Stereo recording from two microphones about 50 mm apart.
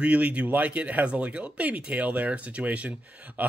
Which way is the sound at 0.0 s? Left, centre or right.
Right.